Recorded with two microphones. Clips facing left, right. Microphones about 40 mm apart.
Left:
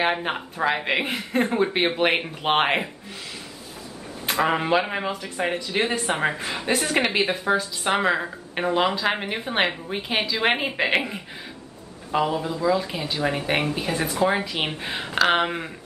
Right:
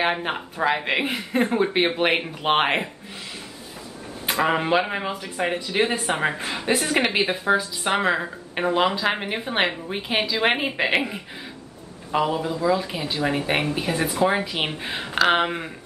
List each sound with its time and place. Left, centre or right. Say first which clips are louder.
0.0 s speech: even; centre
4.3 s speech: even; centre